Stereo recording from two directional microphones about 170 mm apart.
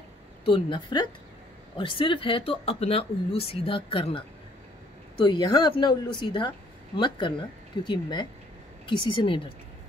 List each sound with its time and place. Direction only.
0.5 s speech: 30° left (ahead or behind)
5.2 s speech: 25° left (ahead or behind)